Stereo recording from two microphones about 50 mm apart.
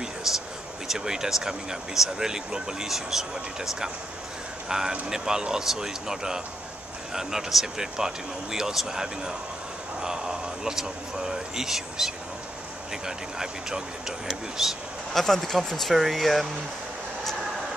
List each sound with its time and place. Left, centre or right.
0.3 s speech: centre
15.2 s speech: centre